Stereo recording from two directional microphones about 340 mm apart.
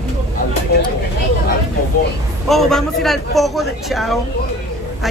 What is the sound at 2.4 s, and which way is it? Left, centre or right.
Speech, centre.